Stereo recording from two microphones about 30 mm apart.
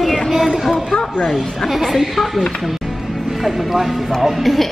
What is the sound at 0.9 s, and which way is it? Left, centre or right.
Speech, left.